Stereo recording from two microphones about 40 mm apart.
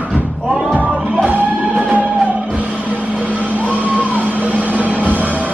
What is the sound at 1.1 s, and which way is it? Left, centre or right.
Music, right.